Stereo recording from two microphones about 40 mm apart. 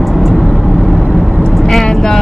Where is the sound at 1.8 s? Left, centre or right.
Centre.